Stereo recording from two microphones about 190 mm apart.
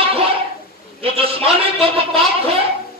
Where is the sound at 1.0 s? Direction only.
30° right (ahead or behind).